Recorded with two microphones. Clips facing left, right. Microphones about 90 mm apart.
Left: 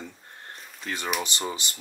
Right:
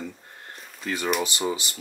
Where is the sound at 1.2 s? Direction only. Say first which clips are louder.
Right 4 dB; 10° right (ahead or behind).